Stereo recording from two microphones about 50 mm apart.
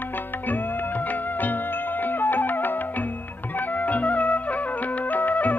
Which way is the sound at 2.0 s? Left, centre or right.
Left.